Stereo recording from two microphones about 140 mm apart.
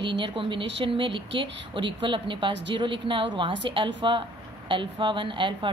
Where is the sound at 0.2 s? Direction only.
35° right (ahead or behind).